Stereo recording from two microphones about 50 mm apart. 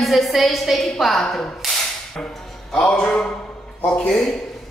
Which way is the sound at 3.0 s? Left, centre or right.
Centre.